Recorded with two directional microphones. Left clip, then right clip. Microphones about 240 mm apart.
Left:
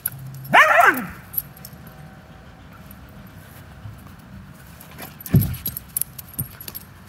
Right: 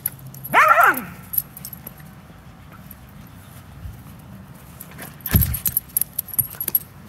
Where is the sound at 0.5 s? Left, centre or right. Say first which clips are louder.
Even; left.